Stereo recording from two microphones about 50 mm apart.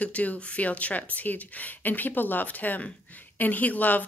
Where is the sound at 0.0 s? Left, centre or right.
Left.